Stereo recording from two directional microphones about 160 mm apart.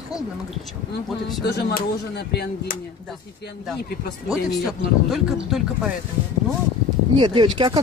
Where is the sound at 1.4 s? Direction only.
80° left.